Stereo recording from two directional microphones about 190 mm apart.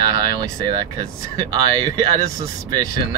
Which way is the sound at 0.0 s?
20° right (ahead or behind).